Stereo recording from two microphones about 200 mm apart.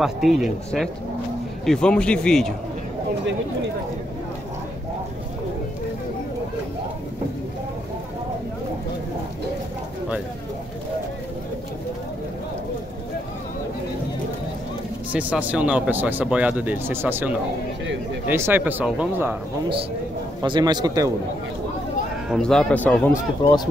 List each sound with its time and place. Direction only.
0.0 s speech: centre (ahead or behind)
15.1 s speech: 5° right (ahead or behind)
20.4 s a man's voice: 20° right (ahead or behind)
22.3 s speech: 5° left (ahead or behind)